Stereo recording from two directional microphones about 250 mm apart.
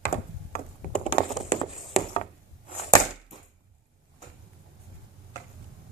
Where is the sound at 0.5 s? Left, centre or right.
Left.